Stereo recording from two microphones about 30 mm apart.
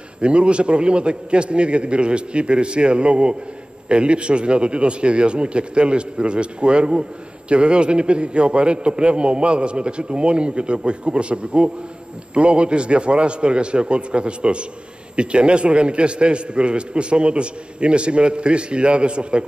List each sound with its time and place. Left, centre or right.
0.2 s a man's voice: right